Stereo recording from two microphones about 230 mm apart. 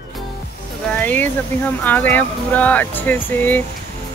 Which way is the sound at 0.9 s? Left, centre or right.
Centre.